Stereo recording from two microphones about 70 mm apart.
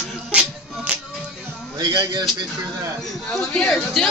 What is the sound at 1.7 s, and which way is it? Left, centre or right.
Speech, right.